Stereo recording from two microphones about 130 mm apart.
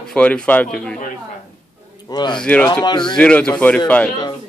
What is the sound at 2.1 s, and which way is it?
Speech, 35° left (ahead or behind).